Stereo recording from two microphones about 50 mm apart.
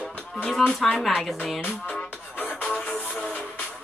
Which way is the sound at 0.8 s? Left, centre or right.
Centre.